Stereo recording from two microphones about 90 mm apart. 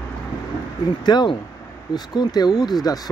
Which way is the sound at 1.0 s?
55° left (ahead or behind).